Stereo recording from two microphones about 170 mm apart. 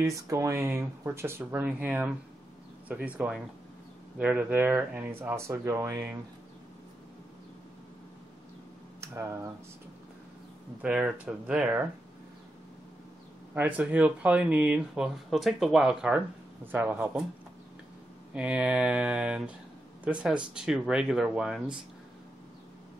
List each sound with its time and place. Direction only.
0.0 s speech: 20° right (ahead or behind)
9.0 s speech: 15° right (ahead or behind)
10.8 s speech: 5° right (ahead or behind)
13.6 s speech: 10° right (ahead or behind)
18.3 s speech: 5° right (ahead or behind)